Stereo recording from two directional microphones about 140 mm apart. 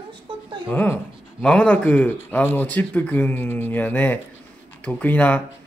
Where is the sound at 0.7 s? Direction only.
10° left (ahead or behind).